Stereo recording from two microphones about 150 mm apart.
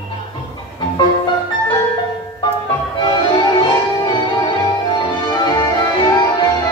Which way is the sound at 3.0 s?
30° left (ahead or behind).